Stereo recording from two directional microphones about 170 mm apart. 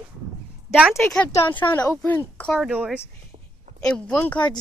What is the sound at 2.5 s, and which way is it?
Speech, 5° right (ahead or behind).